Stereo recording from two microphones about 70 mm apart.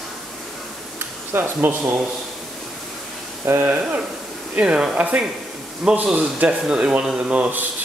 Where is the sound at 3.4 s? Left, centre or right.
Right.